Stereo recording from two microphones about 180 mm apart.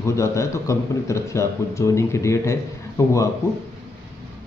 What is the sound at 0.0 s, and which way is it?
A man's voice, 15° left (ahead or behind).